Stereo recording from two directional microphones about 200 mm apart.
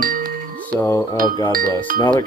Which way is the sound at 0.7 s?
15° left (ahead or behind).